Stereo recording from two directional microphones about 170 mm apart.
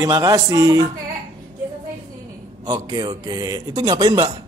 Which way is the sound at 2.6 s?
25° right (ahead or behind).